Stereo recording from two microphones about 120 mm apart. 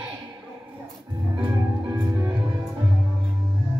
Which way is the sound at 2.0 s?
30° right (ahead or behind).